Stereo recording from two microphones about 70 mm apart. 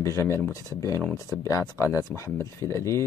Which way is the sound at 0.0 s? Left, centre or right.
Left.